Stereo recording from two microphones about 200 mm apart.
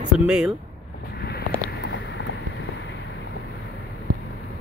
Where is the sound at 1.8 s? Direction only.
60° left (ahead or behind).